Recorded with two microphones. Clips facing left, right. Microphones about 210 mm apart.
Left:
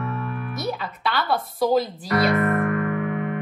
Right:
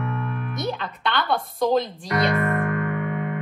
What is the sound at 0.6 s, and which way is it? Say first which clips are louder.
Speech: even; 5° left (ahead or behind).